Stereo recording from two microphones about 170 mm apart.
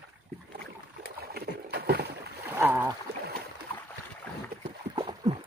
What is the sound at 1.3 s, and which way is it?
Boat, 70° right (ahead or behind).